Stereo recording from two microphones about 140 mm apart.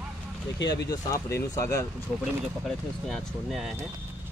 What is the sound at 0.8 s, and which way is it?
Speech, 25° left (ahead or behind).